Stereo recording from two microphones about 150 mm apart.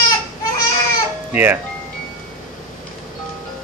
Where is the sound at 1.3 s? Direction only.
15° right (ahead or behind).